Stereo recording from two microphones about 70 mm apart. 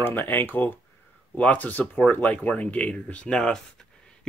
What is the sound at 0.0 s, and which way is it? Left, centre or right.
Speech, left.